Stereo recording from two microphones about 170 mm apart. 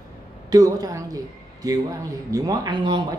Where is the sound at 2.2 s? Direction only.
20° right (ahead or behind).